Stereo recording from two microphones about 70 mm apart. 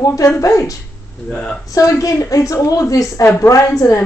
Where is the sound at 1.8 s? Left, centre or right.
Left.